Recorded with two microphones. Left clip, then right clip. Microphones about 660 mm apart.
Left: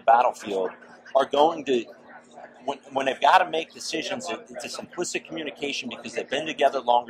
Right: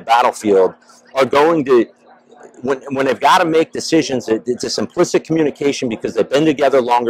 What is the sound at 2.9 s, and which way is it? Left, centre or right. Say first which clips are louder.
Speech: right 6 dB; right.